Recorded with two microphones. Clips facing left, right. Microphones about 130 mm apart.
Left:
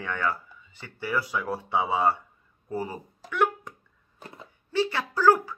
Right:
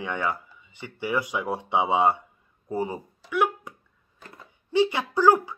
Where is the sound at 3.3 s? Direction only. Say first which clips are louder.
Right 1 dB; 10° right (ahead or behind).